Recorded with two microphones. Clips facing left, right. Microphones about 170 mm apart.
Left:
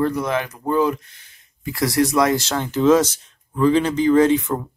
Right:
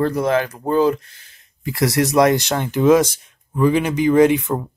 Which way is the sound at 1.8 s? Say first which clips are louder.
Right 1 dB; 75° right (ahead or behind).